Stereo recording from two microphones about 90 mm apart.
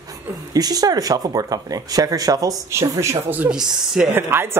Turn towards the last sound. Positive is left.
turn(degrees=-25)  # may be behind; listen again after turning